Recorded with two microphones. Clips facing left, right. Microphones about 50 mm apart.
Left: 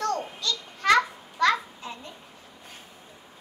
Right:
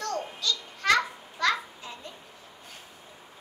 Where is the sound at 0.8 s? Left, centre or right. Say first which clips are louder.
Left 3 dB; centre.